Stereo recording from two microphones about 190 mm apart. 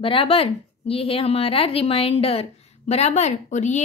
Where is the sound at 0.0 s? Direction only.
30° left (ahead or behind).